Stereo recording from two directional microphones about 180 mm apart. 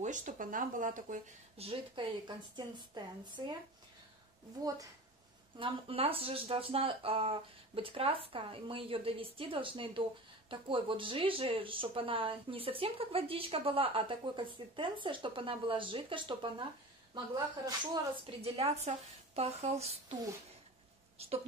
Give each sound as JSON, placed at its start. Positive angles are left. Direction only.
{"t": 0.0, "sound": "speech", "side_deg": -45}
{"t": 5.6, "sound": "speech", "side_deg": -30}
{"t": 18.2, "sound": "speech", "side_deg": -35}
{"t": 21.2, "sound": "a woman's voice", "side_deg": -35}